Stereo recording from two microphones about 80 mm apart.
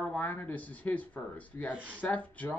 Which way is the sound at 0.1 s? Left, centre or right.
Left.